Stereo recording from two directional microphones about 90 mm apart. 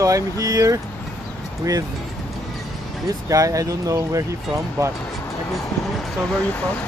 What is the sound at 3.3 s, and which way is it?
Speech, 40° right (ahead or behind).